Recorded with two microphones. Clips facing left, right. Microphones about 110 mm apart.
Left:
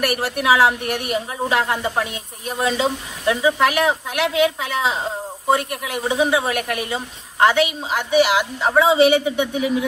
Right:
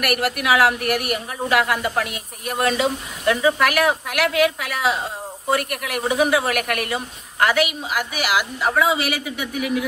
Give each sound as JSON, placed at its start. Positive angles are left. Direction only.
{"t": 0.0, "sound": "a woman's voice", "side_deg": 30}